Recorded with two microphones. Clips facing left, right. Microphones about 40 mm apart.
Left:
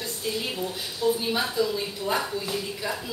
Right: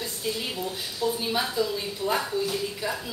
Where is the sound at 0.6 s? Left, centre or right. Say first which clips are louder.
Left 3 dB; centre.